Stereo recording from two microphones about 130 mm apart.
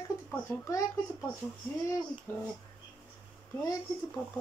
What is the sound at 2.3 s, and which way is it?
Speech, 15° left (ahead or behind).